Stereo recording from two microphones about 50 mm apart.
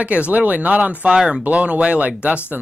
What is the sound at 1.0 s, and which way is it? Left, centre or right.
Speech, centre.